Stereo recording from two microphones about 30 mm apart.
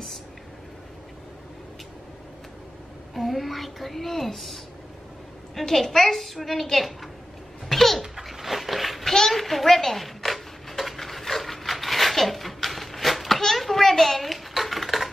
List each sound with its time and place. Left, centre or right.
3.2 s a woman's voice: centre
5.7 s a woman's voice: centre
7.6 s a sound: centre
14.5 s dishes: centre